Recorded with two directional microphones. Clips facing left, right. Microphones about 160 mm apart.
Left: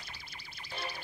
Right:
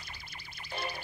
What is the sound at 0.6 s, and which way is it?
Music, 50° right (ahead or behind).